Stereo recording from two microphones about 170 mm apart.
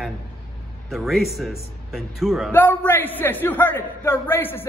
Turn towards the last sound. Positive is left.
turn(degrees=10)  # may be behind; listen again after turning